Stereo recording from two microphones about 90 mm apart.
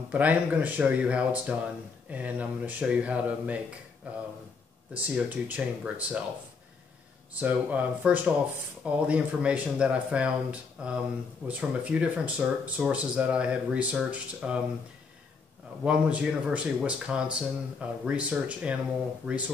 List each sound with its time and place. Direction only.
0.1 s speech: 15° right (ahead or behind)
7.3 s speech: 15° right (ahead or behind)
15.8 s speech: 15° right (ahead or behind)